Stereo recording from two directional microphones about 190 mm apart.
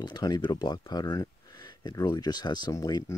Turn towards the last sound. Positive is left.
turn(degrees=20)  # may be behind; listen again after turning